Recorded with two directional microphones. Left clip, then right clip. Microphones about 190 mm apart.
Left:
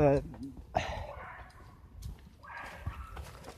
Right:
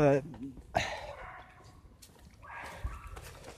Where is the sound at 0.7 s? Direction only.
15° right (ahead or behind).